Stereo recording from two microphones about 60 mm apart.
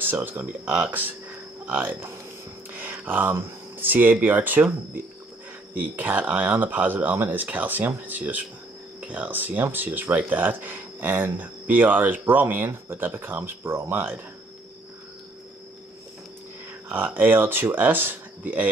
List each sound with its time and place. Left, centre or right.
0.0 s speech: right
16.9 s speech: right